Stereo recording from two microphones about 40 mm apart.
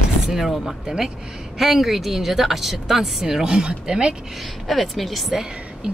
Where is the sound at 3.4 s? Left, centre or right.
Right.